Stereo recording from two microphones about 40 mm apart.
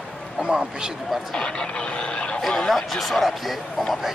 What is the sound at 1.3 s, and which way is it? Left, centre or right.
Speech, left.